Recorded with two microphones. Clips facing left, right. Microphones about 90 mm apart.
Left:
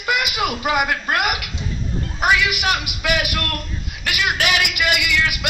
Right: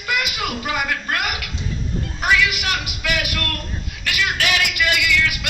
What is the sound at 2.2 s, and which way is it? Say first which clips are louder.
A man's voice: left 2 dB; 20° left (ahead or behind).